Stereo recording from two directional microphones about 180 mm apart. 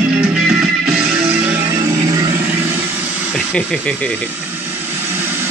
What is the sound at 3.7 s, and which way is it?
Speech, 5° left (ahead or behind).